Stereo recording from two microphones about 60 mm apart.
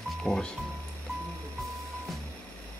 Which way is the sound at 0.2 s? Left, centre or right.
Centre.